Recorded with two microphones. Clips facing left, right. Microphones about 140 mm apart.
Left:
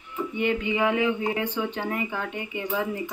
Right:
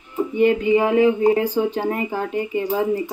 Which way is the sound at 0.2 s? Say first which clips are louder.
Right 9 dB; 40° right (ahead or behind).